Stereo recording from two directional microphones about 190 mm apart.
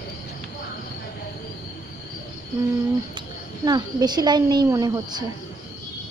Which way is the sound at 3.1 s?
20° right (ahead or behind).